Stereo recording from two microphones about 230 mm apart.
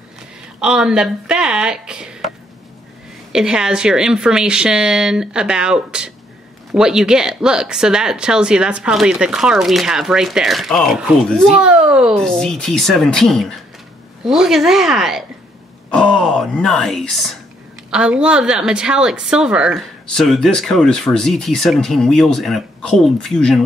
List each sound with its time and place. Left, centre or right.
0.6 s speech: centre
3.3 s a woman's voice: centre